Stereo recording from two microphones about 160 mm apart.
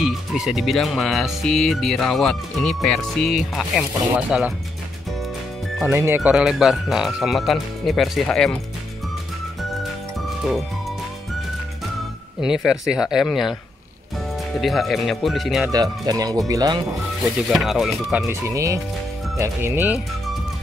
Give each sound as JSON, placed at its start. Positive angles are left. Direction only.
{"t": 0.0, "sound": "speech", "side_deg": 0}
{"t": 5.9, "sound": "speech", "side_deg": -15}
{"t": 9.6, "sound": "music", "side_deg": 0}
{"t": 12.4, "sound": "speech", "side_deg": -5}
{"t": 16.1, "sound": "speech", "side_deg": -25}
{"t": 17.4, "sound": "speech", "side_deg": 0}
{"t": 18.2, "sound": "speech", "side_deg": -20}